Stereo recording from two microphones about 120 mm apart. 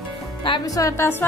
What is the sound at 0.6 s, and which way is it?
Speech, 30° left (ahead or behind).